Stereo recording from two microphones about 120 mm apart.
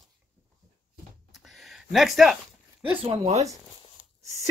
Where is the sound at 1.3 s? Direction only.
Centre (ahead or behind).